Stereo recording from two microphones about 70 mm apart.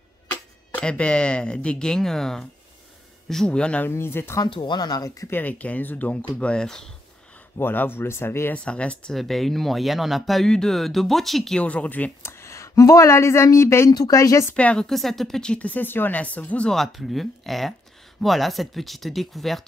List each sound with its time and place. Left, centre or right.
0.7 s speech: centre
3.9 s speech: left
4.4 s speech: left
5.3 s speech: left
6.4 s speech: centre
7.5 s speech: left
8.5 s speech: centre
9.1 s speech: centre
11.6 s speech: centre
12.2 s speech: left
14.5 s speech: centre
14.9 s speech: centre
16.7 s speech: centre